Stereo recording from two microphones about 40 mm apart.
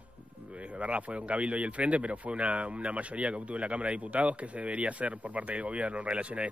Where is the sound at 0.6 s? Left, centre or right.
Right.